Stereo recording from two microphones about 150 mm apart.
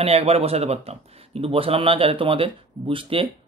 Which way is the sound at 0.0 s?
45° right (ahead or behind).